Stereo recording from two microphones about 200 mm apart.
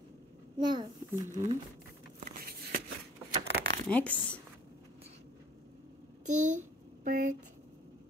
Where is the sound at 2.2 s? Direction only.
50° right (ahead or behind).